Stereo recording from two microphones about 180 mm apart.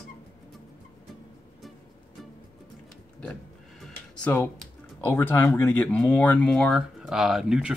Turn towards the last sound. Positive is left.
turn(degrees=-5)  # may be behind; listen again after turning